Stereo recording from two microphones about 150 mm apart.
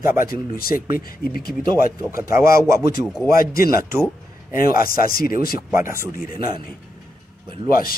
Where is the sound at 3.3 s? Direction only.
70° left (ahead or behind).